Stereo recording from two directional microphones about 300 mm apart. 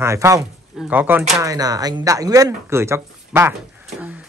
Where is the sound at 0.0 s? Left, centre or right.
Centre.